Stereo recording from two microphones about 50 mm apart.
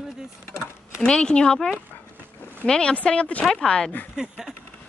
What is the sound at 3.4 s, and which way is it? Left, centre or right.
Speech, centre.